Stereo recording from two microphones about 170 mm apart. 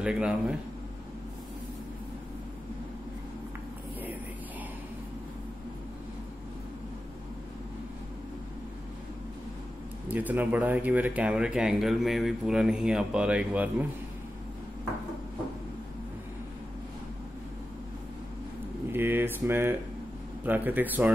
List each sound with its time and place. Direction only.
0.0 s speech: 5° right (ahead or behind)
10.0 s speech: 10° right (ahead or behind)
18.9 s a sound: 10° right (ahead or behind)
20.4 s speech: 10° right (ahead or behind)